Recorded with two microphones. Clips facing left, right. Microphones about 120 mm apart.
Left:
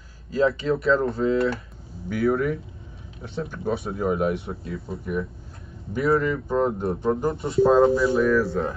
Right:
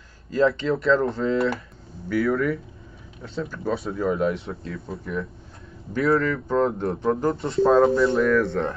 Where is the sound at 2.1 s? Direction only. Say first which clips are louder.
Even; 25° left (ahead or behind).